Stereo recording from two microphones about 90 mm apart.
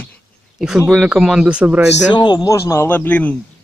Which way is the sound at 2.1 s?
55° left (ahead or behind).